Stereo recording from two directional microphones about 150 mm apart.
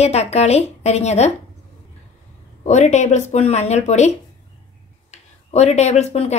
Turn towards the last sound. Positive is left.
turn(degrees=45)  # may be behind; listen again after turning